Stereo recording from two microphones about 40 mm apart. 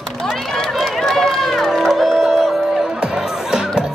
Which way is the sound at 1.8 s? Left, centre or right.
Centre.